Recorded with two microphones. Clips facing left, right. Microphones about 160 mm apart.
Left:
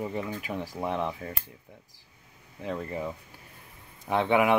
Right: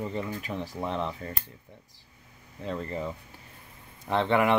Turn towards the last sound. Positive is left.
turn(degrees=10)  # may be behind; listen again after turning